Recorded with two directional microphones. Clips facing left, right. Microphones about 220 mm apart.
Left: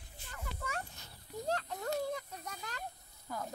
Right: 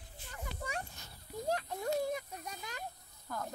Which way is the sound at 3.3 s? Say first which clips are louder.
Even; 10° left (ahead or behind).